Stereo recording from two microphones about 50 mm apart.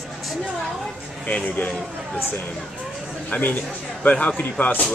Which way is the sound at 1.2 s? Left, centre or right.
Left.